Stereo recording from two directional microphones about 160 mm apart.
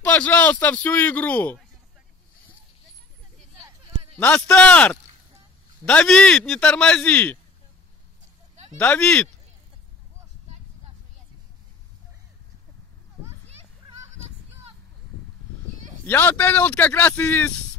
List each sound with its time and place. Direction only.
0.0 s a man's voice: 10° left (ahead or behind)
3.6 s a sound: 20° right (ahead or behind)
4.2 s a man's voice: 10° left (ahead or behind)
8.7 s a man's voice: 10° left (ahead or behind)
13.5 s a sound: 40° right (ahead or behind)
16.1 s a man's voice: 10° left (ahead or behind)